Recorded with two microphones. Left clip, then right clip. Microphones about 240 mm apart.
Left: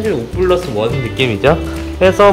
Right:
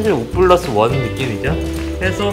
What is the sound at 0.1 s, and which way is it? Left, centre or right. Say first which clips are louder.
Speech: right 3 dB; centre.